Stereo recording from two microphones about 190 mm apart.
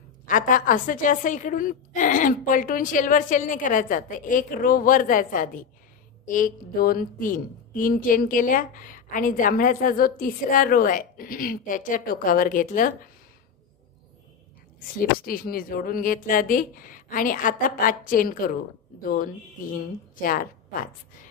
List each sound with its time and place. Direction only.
0.3 s speech: 45° left (ahead or behind)
15.0 s speech: 50° left (ahead or behind)